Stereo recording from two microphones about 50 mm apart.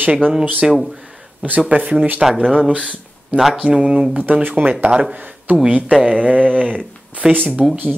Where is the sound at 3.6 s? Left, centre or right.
Right.